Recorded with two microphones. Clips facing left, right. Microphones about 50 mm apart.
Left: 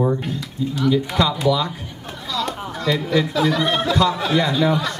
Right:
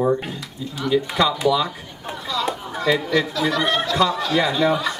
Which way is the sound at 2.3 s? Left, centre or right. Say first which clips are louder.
Even; centre.